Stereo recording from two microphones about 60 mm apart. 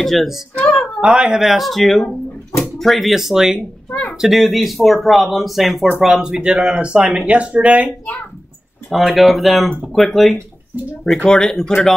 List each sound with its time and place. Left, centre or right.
0.0 s speech: centre
1.0 s speech: centre
3.9 s a sound: left
4.2 s speech: centre; by 7.9 s right
8.9 s speech: centre